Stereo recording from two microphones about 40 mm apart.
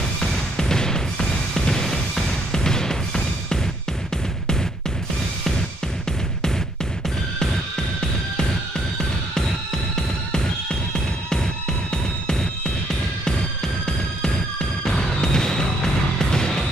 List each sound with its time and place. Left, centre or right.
0.2 s music: centre
9.9 s music: centre
11.9 s music: centre
13.8 s music: centre